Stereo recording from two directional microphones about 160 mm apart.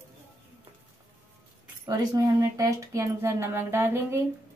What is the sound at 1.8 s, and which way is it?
Speech, 20° right (ahead or behind).